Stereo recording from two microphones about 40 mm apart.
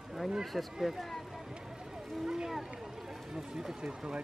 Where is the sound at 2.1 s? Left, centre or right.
Centre.